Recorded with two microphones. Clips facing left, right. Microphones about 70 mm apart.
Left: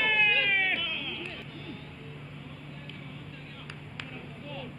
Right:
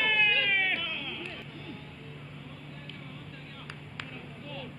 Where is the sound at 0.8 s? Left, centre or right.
Right.